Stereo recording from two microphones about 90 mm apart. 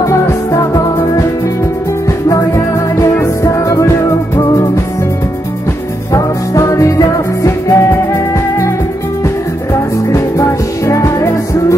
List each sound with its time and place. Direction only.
0.0 s music: 35° left (ahead or behind)
3.4 s music: 35° left (ahead or behind)
6.1 s music: 35° left (ahead or behind)
10.9 s music: 35° left (ahead or behind)